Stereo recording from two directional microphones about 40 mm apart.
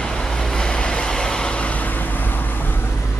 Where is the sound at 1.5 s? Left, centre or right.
Left.